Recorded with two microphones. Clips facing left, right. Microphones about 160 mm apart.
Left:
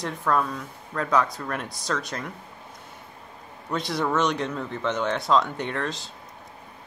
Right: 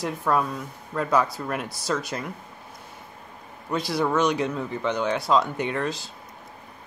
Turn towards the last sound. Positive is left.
turn(degrees=-5)  # may be behind; listen again after turning